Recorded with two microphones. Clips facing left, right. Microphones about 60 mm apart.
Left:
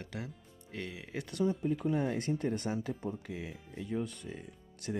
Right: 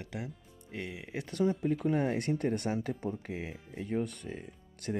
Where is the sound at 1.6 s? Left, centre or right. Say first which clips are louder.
Right 2 dB; right.